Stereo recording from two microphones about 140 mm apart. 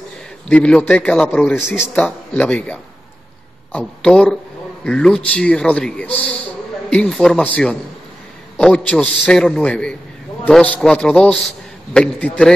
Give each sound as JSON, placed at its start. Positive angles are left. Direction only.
{"t": 0.5, "sound": "a man's voice", "side_deg": 10}